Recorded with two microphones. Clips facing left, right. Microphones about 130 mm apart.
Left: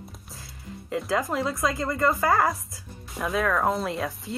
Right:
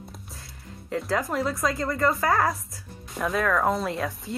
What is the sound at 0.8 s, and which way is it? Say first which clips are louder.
Speech: even; centre (ahead or behind).